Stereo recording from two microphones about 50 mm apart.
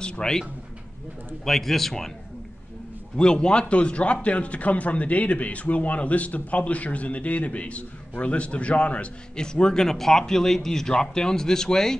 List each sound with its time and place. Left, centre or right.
0.0 s a man's voice: centre
3.2 s a man's voice: centre